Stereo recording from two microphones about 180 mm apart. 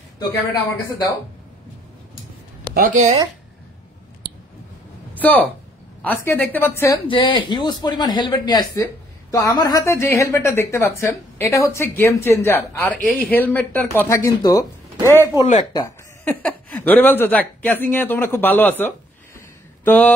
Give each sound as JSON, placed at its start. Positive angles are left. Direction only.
{"t": 2.7, "sound": "speech", "side_deg": -45}
{"t": 5.2, "sound": "a woman's voice", "side_deg": 10}
{"t": 7.1, "sound": "a woman's voice", "side_deg": 25}
{"t": 15.0, "sound": "a man's voice", "side_deg": -15}
{"t": 15.7, "sound": "speech", "side_deg": 20}
{"t": 16.4, "sound": "a woman's voice", "side_deg": 10}